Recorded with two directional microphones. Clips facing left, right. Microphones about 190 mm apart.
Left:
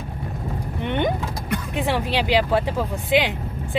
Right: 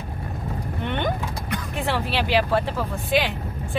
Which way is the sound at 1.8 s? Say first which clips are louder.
Left 2 dB; 15° left (ahead or behind).